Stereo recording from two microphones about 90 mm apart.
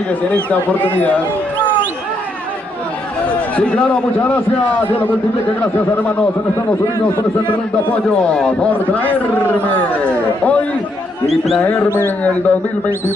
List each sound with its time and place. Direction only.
3.5 s a man's voice: 10° left (ahead or behind)
7.9 s a man's voice: 10° left (ahead or behind)
11.2 s speech: centre (ahead or behind)
11.6 s a man's voice: 15° left (ahead or behind)